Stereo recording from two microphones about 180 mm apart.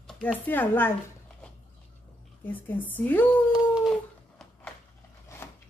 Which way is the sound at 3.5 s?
5° right (ahead or behind).